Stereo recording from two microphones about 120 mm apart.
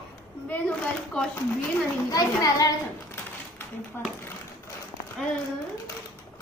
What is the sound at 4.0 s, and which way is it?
Speech, 20° left (ahead or behind).